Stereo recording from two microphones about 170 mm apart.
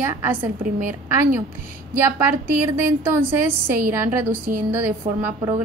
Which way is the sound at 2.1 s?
15° right (ahead or behind).